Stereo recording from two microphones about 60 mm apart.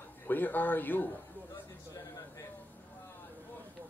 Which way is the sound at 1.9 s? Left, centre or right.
Left.